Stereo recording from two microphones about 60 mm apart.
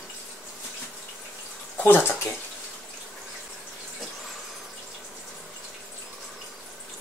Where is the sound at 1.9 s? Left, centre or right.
Left.